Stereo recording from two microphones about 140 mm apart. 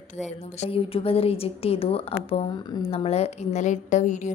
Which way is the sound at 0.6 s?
40° left (ahead or behind).